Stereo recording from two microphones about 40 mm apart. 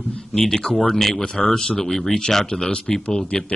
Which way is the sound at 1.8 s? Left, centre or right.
Centre.